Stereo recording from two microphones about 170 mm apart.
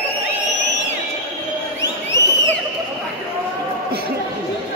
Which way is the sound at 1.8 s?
90° left.